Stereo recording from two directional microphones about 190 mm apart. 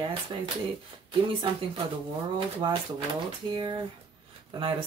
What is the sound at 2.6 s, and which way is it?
Speech, 25° right (ahead or behind).